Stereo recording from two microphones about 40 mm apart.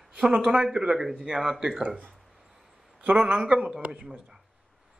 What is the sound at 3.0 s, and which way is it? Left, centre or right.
Speech, right.